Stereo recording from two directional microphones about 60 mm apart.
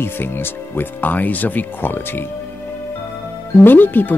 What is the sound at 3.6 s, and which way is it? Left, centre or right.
Speech, left.